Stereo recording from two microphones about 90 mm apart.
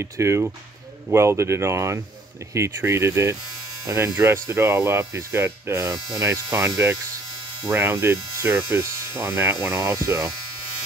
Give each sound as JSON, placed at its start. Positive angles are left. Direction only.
{"t": 0.0, "sound": "speech", "side_deg": -30}